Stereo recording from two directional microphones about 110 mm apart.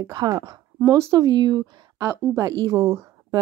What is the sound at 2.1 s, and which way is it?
Speech, 25° right (ahead or behind).